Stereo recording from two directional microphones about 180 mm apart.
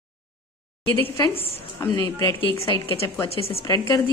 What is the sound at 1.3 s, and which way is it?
Speech, 30° left (ahead or behind).